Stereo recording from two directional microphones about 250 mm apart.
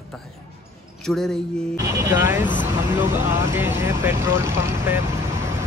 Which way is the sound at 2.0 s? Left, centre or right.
Centre.